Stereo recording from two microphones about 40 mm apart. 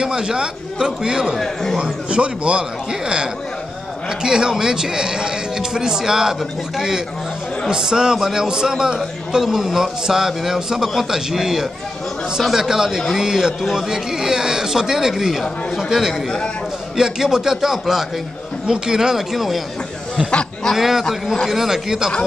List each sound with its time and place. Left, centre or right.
0.0 s a man's voice: centre
1.4 s a man's voice: centre
1.8 s a man's voice: right
7.7 s a man's voice: centre
20.7 s speech: centre